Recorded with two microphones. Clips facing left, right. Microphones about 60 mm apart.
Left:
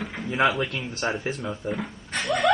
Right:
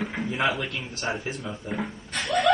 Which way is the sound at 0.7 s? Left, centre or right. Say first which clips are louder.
Left 2 dB; centre.